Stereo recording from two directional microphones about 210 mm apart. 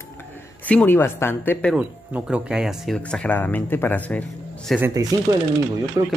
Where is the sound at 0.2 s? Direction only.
10° left (ahead or behind).